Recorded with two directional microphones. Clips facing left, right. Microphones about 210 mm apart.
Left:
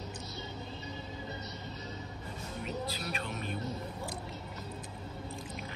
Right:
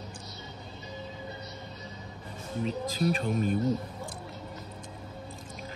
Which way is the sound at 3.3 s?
45° right (ahead or behind).